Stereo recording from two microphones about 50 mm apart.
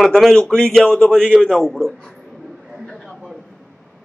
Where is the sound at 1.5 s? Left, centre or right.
Centre.